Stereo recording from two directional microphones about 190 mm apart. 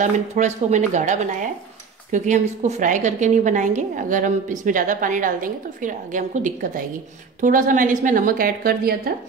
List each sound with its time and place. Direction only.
0.0 s a woman's voice: 40° right (ahead or behind)